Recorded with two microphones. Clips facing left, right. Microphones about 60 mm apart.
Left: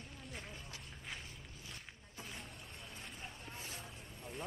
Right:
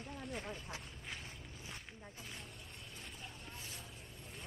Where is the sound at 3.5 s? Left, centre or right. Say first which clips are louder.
Left 2 dB; centre.